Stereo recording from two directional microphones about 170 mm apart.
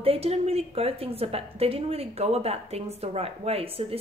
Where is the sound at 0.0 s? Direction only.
35° right (ahead or behind).